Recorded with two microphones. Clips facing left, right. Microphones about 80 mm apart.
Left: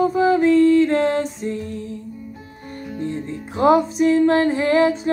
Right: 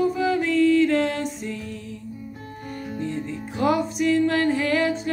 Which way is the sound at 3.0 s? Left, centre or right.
Left.